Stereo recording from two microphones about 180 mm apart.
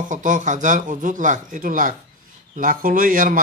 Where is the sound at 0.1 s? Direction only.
45° right (ahead or behind).